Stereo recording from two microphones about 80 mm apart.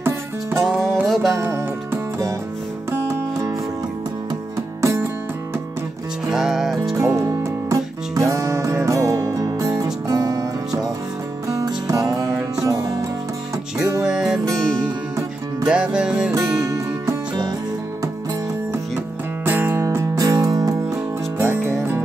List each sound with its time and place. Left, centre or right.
0.6 s music: centre
1.4 s music: right
4.8 s music: right
6.2 s music: centre
7.0 s music: right
11.4 s music: right
14.0 s music: centre
15.6 s music: centre
16.5 s music: right
19.4 s music: right
19.8 s music: right
21.4 s music: right